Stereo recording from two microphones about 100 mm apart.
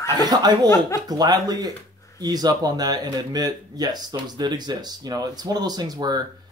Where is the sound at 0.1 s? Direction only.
45° right (ahead or behind).